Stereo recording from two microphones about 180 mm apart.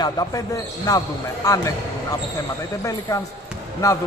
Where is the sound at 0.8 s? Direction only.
20° left (ahead or behind).